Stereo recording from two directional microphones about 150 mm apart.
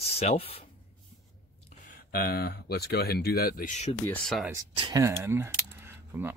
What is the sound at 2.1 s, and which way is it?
Speech, 90° left.